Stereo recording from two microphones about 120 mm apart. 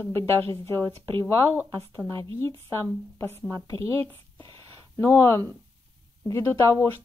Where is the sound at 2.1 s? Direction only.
20° left (ahead or behind).